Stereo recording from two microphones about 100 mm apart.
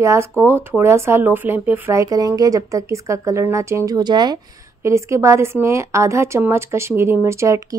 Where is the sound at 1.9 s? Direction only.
35° right (ahead or behind).